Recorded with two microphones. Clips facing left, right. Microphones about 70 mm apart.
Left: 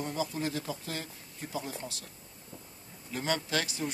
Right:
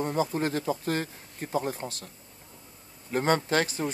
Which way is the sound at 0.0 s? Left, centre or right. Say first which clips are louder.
Right 6 dB; right.